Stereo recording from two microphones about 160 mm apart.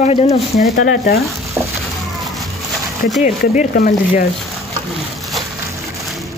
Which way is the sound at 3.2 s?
55° left (ahead or behind).